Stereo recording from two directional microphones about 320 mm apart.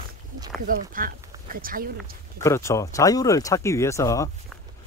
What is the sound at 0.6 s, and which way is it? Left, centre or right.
Speech, right.